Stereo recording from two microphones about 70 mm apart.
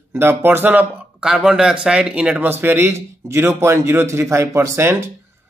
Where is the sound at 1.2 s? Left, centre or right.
Centre.